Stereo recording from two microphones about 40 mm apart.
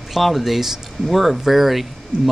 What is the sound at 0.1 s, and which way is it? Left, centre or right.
Speech, centre.